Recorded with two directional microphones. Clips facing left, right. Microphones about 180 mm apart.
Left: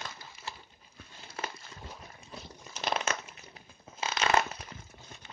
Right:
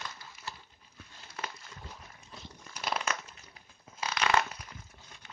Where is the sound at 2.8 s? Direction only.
25° left (ahead or behind).